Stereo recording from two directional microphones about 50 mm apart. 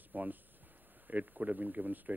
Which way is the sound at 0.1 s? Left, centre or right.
Right.